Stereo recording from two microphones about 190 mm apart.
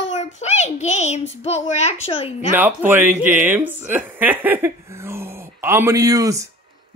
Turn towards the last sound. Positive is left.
turn(degrees=-15)  # may be behind; listen again after turning